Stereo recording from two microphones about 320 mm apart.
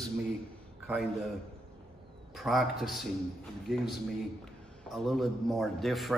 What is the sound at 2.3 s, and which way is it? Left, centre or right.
A man's voice, centre.